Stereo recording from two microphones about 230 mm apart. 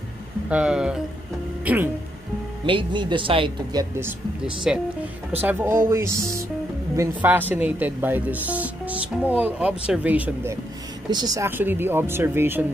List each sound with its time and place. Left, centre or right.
0.5 s speech: centre
2.6 s speech: right